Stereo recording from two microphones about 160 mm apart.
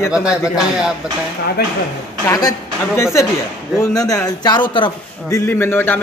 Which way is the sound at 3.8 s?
20° left (ahead or behind).